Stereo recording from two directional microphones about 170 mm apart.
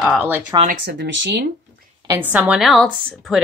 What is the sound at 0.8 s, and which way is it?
Speech, 90° right.